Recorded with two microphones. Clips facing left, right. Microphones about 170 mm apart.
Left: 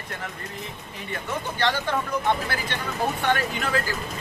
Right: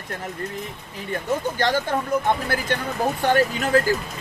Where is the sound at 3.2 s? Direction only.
40° right (ahead or behind).